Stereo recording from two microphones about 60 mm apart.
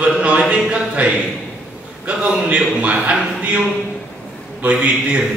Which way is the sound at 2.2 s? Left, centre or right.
Centre.